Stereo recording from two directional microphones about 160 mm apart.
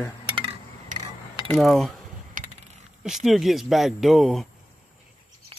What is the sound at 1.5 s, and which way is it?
Speech, centre (ahead or behind).